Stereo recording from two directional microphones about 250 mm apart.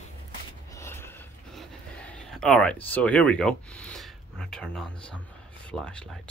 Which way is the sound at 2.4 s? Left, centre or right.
Centre.